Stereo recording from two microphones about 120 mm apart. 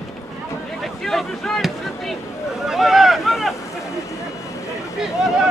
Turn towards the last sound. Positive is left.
turn(degrees=0)  # may be behind; listen again after turning